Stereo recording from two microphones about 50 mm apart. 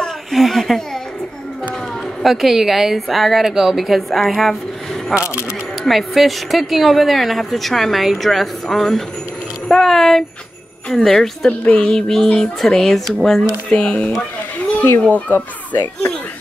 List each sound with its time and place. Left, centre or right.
0.3 s speech: centre
2.2 s speech: centre
11.6 s a child's voice: left
11.9 s speech: centre
15.0 s a child's voice: left